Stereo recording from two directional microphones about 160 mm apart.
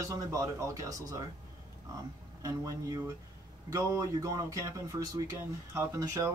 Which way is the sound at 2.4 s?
20° right (ahead or behind).